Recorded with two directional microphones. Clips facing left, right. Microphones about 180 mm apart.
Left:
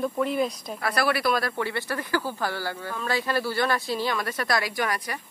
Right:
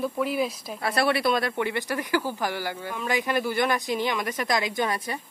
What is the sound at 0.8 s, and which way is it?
Speech, 25° right (ahead or behind).